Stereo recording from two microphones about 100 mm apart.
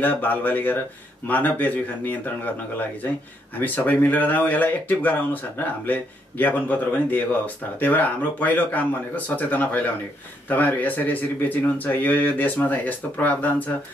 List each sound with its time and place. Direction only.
0.0 s speech: 15° left (ahead or behind)
3.5 s speech: 15° left (ahead or behind)